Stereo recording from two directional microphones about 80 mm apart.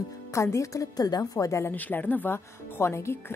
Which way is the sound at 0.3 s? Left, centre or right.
Left.